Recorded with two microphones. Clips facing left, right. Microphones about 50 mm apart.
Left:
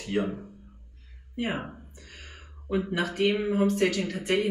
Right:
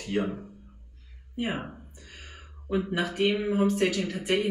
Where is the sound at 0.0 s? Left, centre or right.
Centre.